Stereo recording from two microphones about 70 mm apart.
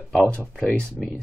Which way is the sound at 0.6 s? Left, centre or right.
Centre.